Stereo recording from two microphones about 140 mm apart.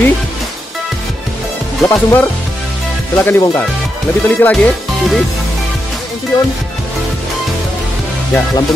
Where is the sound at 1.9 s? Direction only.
15° left (ahead or behind).